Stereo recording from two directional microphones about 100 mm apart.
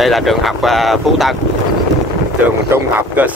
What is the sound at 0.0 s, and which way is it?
Speech, centre (ahead or behind).